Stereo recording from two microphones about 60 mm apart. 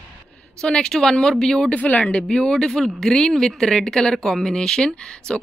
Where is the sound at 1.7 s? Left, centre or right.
Left.